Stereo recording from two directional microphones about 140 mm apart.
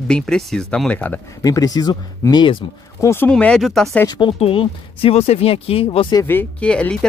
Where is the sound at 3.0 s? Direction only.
20° left (ahead or behind).